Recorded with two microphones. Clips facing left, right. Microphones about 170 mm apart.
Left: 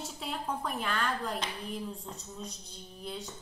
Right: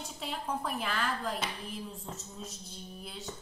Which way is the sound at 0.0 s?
Centre (ahead or behind).